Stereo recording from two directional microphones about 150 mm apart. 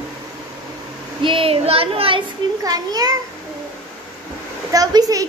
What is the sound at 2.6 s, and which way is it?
Speech, 25° right (ahead or behind).